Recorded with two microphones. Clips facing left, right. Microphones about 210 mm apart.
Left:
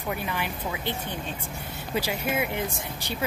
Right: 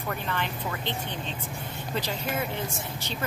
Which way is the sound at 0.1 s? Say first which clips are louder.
Left 1 dB; 10° left (ahead or behind).